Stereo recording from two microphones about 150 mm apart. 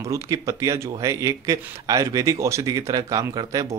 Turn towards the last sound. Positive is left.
turn(degrees=-25)  # may be behind; listen again after turning